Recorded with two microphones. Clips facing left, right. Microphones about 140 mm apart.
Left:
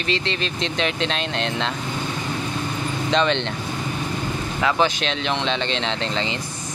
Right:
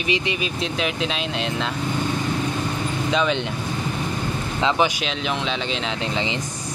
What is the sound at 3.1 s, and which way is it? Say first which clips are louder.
Speech: left 2 dB; 5° right (ahead or behind).